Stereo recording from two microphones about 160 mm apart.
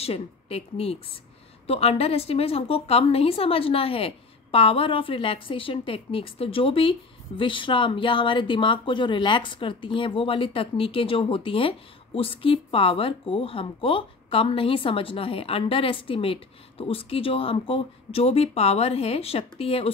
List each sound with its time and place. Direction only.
0.0 s a woman's voice: 40° left (ahead or behind)